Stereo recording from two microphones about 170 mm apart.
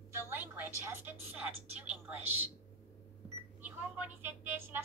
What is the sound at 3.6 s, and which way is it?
A woman's voice, 10° right (ahead or behind).